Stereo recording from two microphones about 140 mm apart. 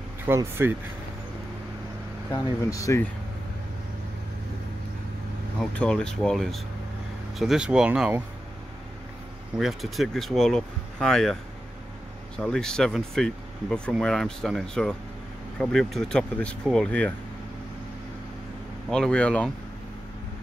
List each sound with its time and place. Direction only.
0.3 s speech: 15° right (ahead or behind)
2.7 s speech: 20° left (ahead or behind)
5.6 s speech: 5° left (ahead or behind)
9.6 s speech: centre (ahead or behind)
12.4 s speech: 5° left (ahead or behind)
18.9 s speech: 5° left (ahead or behind)